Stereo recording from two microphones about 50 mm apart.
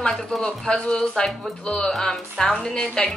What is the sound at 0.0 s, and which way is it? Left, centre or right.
Speech, centre.